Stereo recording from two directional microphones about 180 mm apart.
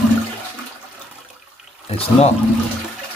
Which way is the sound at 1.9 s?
35° left (ahead or behind).